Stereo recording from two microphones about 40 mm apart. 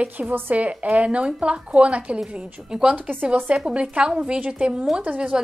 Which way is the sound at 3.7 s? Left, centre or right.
Right.